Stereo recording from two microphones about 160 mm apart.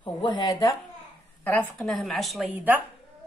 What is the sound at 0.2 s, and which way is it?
Speech, 25° left (ahead or behind).